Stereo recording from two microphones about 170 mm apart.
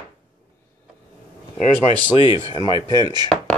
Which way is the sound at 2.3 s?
25° right (ahead or behind).